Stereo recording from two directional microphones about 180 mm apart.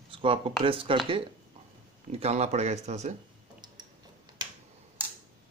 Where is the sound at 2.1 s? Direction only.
35° right (ahead or behind).